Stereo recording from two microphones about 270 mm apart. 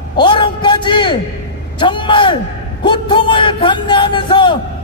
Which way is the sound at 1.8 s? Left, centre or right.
Centre.